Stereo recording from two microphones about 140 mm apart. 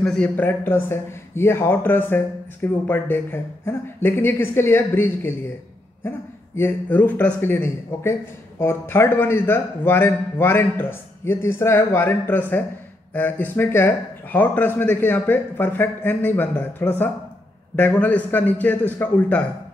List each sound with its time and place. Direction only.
0.0 s a man's voice: 5° left (ahead or behind)